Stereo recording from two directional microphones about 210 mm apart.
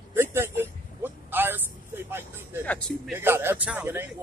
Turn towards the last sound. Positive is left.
turn(degrees=-5)  # may be behind; listen again after turning